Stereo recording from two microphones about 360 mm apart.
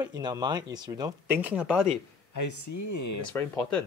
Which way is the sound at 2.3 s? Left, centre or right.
Left.